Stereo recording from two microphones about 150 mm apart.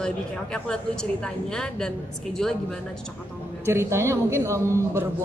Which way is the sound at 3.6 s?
20° right (ahead or behind).